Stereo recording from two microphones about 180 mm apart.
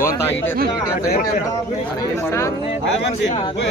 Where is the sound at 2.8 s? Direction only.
85° left.